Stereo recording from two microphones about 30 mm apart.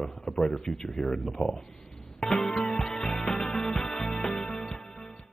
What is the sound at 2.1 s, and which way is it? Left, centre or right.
Music, centre.